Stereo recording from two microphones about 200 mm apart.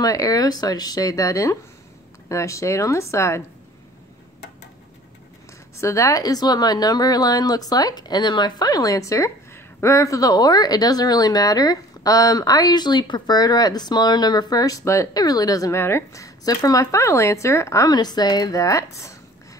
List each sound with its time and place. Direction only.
0.0 s speech: 20° left (ahead or behind)
5.8 s speech: 15° left (ahead or behind)